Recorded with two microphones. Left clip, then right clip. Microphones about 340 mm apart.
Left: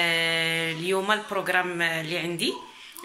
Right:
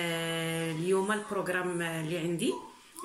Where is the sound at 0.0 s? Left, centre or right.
Centre.